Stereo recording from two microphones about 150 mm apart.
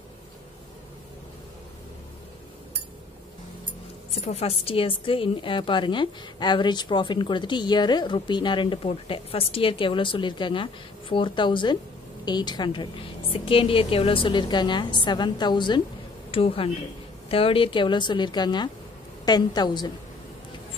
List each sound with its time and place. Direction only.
4.1 s a woman's voice: 45° left (ahead or behind); by 19.9 s 30° left (ahead or behind)